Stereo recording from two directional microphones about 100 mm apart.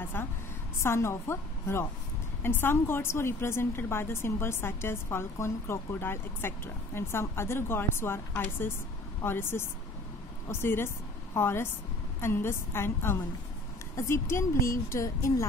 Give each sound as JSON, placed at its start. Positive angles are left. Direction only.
{"t": 0.0, "sound": "a woman's voice", "side_deg": 20}